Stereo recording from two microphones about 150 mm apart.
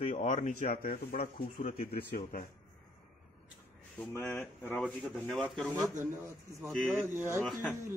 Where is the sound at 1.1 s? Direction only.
40° left (ahead or behind).